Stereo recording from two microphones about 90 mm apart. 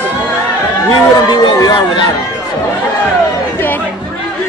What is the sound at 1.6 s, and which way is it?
Speech, 55° left (ahead or behind).